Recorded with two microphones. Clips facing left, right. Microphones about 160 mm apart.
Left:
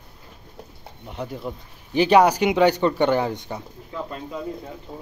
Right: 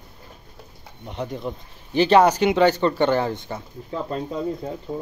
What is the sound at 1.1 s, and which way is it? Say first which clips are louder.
Speech: right 2 dB; 5° left (ahead or behind).